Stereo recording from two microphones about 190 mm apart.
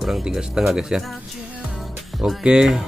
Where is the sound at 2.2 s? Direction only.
5° right (ahead or behind).